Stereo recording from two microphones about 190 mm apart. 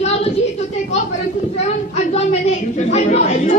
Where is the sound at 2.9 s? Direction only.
35° left (ahead or behind).